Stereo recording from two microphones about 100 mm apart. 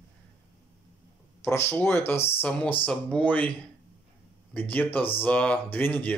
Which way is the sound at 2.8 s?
10° left (ahead or behind).